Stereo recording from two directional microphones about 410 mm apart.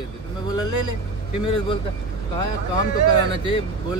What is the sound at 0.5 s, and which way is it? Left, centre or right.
Speech, left.